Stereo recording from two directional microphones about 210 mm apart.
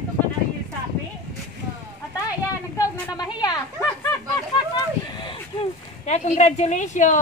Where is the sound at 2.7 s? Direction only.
15° left (ahead or behind).